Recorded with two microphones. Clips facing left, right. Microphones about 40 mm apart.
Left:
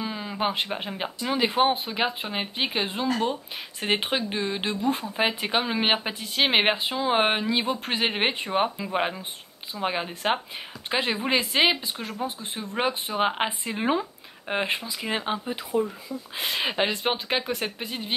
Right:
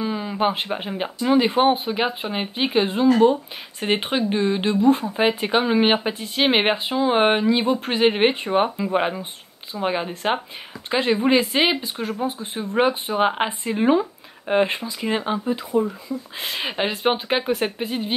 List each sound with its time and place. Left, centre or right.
0.0 s speech: centre
16.9 s speech: centre